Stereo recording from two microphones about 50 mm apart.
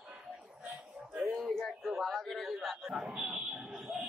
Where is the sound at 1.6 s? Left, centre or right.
Centre.